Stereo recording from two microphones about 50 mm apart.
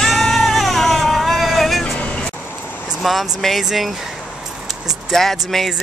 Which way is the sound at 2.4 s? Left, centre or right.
Left.